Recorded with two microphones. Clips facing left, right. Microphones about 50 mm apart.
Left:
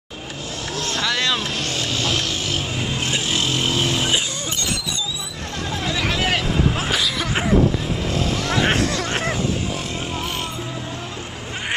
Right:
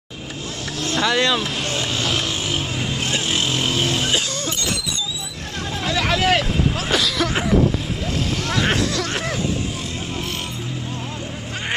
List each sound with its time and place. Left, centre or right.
0.9 s speech: centre
1.8 s vehicle: centre
5.9 s vehicle: centre
6.9 s throat clearing: centre
8.5 s a sound: left
8.7 s a sound: left